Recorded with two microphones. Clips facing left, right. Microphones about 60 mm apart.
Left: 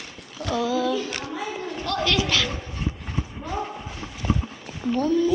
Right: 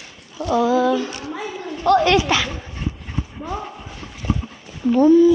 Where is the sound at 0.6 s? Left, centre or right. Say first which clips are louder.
Right 7 dB; right.